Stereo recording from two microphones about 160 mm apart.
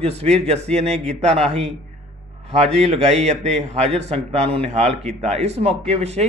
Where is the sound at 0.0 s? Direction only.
40° right (ahead or behind).